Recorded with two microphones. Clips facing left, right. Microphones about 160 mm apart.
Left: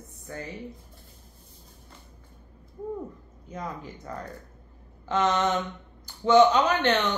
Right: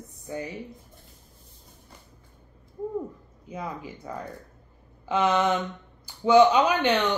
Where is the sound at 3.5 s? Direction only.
10° right (ahead or behind).